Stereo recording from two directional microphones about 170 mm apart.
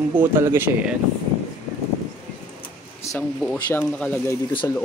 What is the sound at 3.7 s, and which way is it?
Speech, 10° left (ahead or behind).